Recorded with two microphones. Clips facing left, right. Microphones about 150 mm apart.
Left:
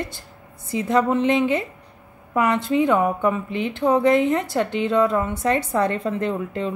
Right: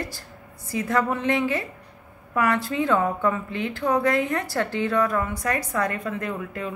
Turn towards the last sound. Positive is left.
turn(degrees=25)  # may be behind; listen again after turning